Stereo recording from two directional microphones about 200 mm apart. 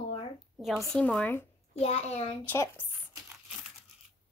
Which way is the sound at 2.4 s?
10° left (ahead or behind).